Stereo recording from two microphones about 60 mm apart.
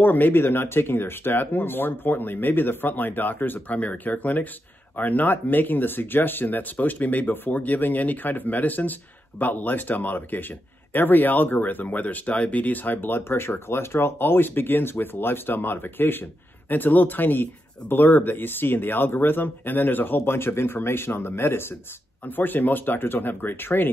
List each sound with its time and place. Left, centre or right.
0.0 s speech: left